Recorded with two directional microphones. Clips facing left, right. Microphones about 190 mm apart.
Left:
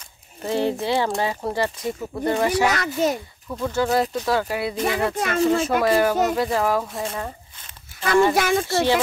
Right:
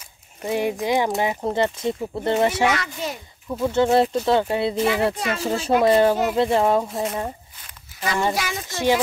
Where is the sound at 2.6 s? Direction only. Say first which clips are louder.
Left 2 dB; 40° left (ahead or behind).